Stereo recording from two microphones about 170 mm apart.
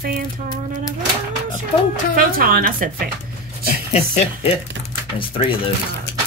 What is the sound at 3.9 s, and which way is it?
A woman's voice, 35° left (ahead or behind).